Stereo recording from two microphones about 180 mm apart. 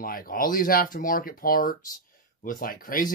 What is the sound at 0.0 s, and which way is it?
Speech, 55° left (ahead or behind).